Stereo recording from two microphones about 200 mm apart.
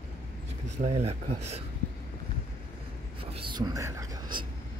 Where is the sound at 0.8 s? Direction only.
30° right (ahead or behind).